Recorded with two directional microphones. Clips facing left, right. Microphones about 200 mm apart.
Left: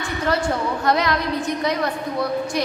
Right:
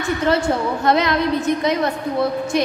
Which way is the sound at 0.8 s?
25° right (ahead or behind).